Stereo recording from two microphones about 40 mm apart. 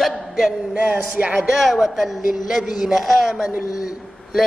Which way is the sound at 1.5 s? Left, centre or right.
Centre.